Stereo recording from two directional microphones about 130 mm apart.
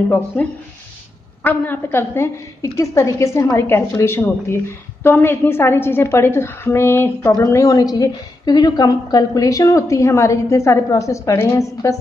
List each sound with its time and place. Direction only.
0.3 s a woman's voice: 10° left (ahead or behind)